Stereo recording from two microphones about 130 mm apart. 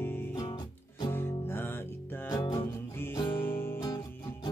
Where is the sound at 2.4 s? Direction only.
40° left (ahead or behind).